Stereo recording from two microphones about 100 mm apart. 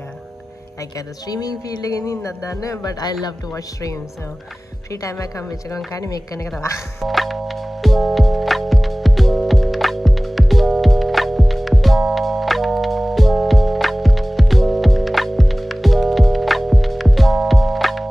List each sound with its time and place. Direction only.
0.9 s music: 40° left (ahead or behind)
5.0 s music: 35° left (ahead or behind)
7.0 s music: centre (ahead or behind)